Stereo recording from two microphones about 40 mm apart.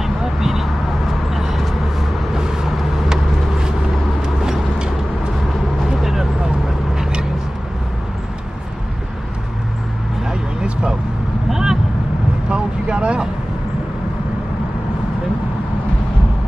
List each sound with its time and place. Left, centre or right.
0.0 s vehicle: centre
2.3 s vehicle: centre
11.5 s vehicle: centre
12.4 s vehicle: right